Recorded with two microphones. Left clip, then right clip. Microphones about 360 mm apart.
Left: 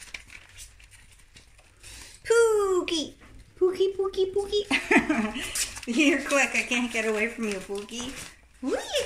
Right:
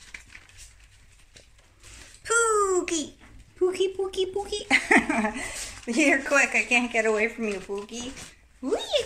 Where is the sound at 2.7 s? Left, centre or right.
Right.